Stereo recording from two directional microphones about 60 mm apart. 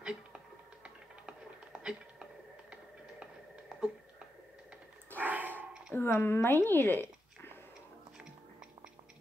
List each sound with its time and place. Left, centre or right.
0.0 s a sound: centre
0.8 s music: centre
5.1 s dog: right
5.9 s a woman's voice: left